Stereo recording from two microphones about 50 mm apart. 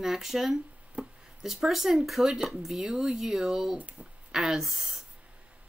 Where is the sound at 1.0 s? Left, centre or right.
Right.